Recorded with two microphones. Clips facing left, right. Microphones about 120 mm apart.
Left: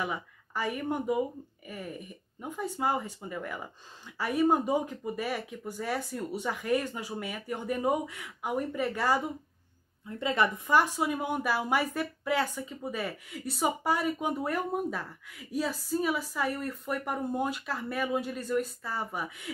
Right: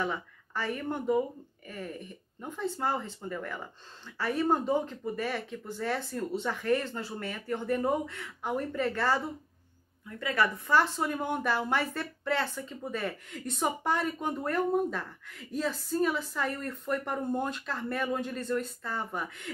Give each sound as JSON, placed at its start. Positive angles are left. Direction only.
{"t": 0.0, "sound": "speech", "side_deg": 10}